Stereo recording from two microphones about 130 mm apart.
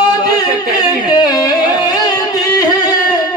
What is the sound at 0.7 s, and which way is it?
Music, 25° left (ahead or behind).